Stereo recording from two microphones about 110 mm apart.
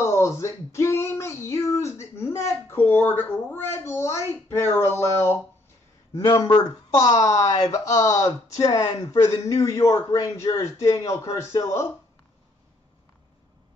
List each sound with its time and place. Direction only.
0.0 s speech: 25° left (ahead or behind)
6.3 s speech: 35° left (ahead or behind)